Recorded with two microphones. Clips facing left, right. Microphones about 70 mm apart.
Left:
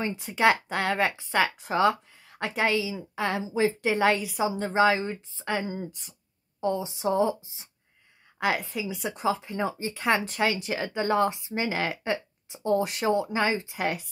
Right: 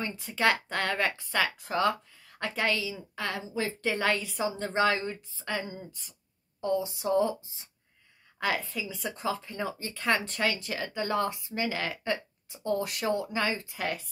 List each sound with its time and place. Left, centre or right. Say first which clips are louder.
0.0 s a woman's voice: left 4 dB; left
5.0 s speech: left 3 dB; left